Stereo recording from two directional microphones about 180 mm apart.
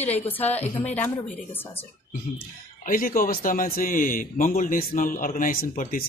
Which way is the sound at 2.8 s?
50° left (ahead or behind).